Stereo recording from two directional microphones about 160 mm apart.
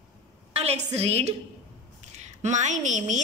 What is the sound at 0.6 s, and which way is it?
A woman's voice, 40° right (ahead or behind).